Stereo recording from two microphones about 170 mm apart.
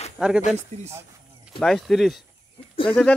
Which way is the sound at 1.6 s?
Centre (ahead or behind).